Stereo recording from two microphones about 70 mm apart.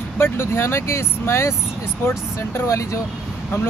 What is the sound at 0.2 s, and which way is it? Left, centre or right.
Speech, left.